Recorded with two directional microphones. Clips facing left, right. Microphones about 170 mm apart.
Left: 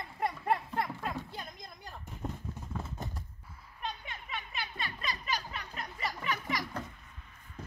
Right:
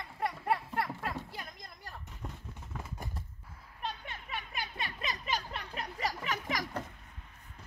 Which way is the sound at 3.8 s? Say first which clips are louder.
Even; centre (ahead or behind).